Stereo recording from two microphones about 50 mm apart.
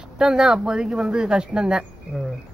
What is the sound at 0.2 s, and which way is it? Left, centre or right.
Speech, centre.